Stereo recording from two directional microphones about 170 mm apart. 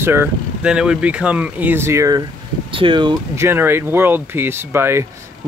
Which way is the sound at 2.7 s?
30° right (ahead or behind).